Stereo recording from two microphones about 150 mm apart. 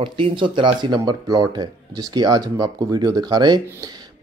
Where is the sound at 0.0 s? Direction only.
35° right (ahead or behind).